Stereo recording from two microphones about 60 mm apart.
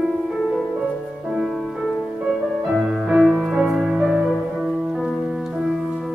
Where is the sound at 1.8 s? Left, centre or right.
Centre.